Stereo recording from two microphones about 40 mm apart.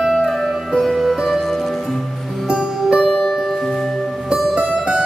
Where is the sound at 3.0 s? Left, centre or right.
Centre.